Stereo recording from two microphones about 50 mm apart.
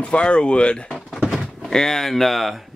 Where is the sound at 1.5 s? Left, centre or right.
Centre.